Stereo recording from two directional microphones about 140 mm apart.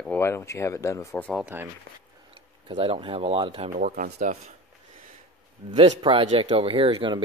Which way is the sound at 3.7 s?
65° right (ahead or behind).